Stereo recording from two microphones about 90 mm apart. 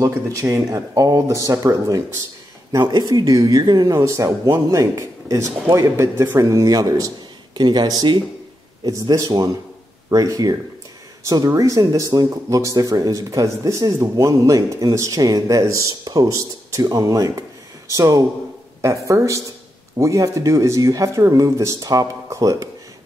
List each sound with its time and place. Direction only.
0.0 s speech: 35° right (ahead or behind)
7.5 s speech: 55° right (ahead or behind)
9.1 s speech: 40° right (ahead or behind)
16.0 s speech: 50° right (ahead or behind)
16.3 s speech: 40° right (ahead or behind)